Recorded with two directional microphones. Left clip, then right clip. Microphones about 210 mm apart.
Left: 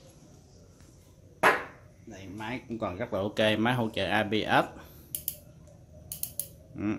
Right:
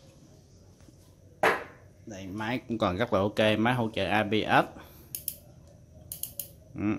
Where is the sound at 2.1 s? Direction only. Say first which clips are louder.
Right 4 dB; 50° right (ahead or behind).